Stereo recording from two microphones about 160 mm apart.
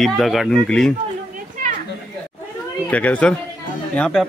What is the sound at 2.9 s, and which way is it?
A man's voice, 10° left (ahead or behind).